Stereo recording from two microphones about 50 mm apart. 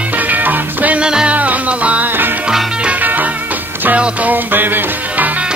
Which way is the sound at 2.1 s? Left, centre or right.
Right.